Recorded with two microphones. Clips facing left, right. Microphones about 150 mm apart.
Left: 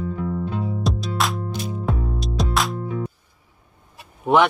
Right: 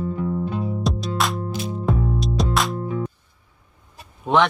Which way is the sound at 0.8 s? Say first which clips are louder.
Even; centre (ahead or behind).